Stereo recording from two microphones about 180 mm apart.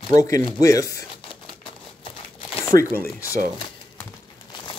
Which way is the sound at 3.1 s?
20° left (ahead or behind).